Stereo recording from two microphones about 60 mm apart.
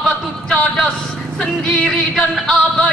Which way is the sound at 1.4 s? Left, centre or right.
Centre.